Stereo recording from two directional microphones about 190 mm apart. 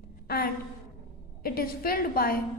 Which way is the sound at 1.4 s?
50° left (ahead or behind).